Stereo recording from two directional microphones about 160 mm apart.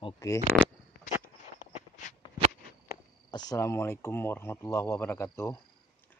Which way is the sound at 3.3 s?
25° left (ahead or behind).